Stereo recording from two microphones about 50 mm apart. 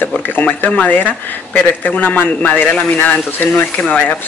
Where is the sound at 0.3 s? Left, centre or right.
Left.